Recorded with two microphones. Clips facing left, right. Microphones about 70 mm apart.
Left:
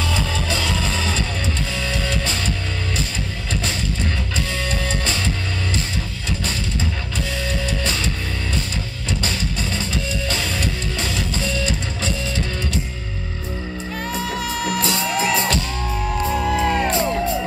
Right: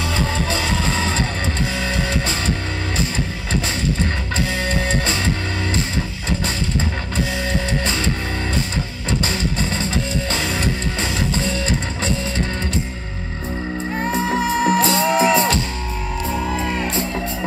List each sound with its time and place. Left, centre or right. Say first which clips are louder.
0.2 s music: right 2 dB; right
4.6 s music: right 3 dB; right
9.2 s music: right 3 dB; right
11.1 s music: right 2 dB; right
14.0 s music: right 6 dB; right